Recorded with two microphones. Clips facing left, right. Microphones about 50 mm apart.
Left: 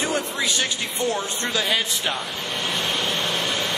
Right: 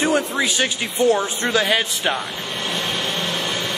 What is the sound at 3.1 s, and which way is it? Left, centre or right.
Vehicle, right.